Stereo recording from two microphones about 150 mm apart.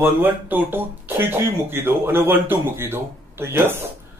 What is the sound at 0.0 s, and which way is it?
Speech, 15° right (ahead or behind).